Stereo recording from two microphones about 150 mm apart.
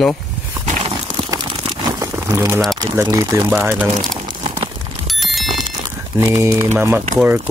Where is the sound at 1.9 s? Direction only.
20° right (ahead or behind).